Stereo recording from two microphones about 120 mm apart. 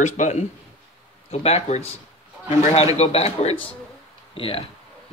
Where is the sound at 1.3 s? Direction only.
60° left (ahead or behind).